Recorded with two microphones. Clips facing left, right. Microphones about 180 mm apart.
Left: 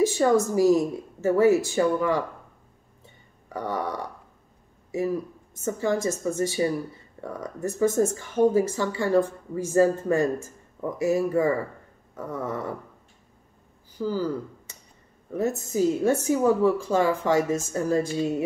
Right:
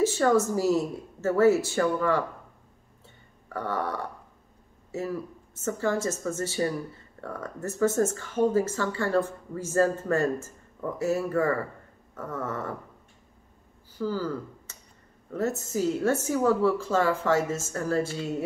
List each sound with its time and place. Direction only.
0.0 s speech: 15° left (ahead or behind)
3.4 s a sound: 15° left (ahead or behind)
4.9 s speech: 15° left (ahead or behind)
13.9 s speech: 15° left (ahead or behind)